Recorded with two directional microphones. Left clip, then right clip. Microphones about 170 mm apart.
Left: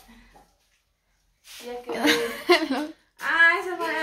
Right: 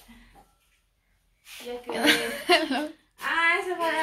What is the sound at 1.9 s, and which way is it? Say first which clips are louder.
Chuckle: even; 10° left (ahead or behind).